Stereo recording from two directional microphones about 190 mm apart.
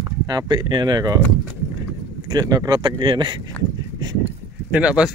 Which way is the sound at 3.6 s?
5° left (ahead or behind).